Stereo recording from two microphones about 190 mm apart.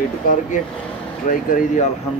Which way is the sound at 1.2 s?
40° left (ahead or behind).